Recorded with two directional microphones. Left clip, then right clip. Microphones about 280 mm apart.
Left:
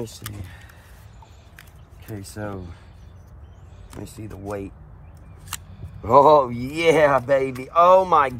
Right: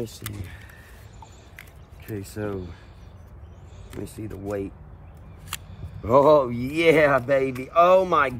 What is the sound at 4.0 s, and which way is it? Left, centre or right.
Speech, centre.